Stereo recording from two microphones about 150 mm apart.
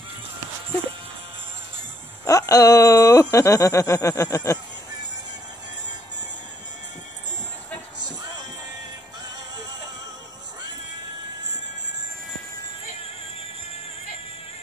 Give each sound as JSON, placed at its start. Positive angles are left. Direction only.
{"t": 2.2, "sound": "speech", "side_deg": 20}